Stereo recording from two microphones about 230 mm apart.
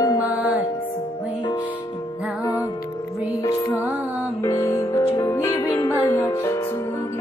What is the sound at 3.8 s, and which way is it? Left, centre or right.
Music, centre.